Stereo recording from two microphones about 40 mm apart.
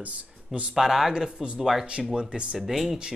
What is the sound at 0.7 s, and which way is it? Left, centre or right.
Speech, centre.